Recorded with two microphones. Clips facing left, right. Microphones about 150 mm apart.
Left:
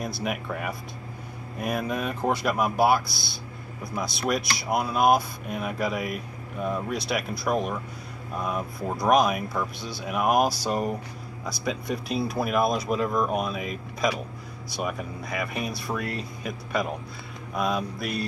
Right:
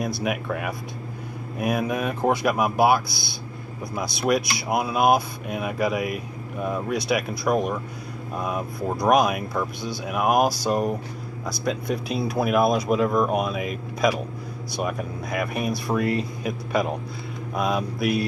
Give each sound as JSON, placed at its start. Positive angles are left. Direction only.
{"t": 0.2, "sound": "speech", "side_deg": 0}
{"t": 4.2, "sound": "speech", "side_deg": -5}
{"t": 15.5, "sound": "speech", "side_deg": -55}
{"t": 16.0, "sound": "speech", "side_deg": 0}